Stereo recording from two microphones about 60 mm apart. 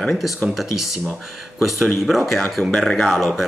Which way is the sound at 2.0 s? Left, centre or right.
Centre.